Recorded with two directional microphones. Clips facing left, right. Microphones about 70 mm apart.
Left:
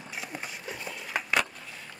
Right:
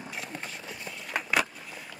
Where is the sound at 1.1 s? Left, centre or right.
Centre.